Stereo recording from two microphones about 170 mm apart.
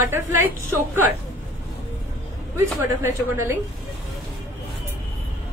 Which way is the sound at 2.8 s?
15° right (ahead or behind).